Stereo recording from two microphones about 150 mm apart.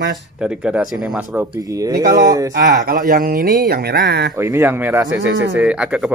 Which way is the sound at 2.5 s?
65° right (ahead or behind).